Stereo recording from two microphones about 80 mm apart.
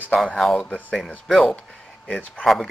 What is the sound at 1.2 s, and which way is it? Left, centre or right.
Speech, centre.